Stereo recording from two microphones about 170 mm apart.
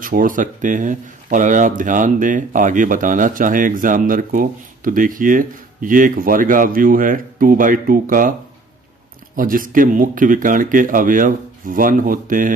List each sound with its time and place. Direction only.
0.0 s speech: 55° right (ahead or behind)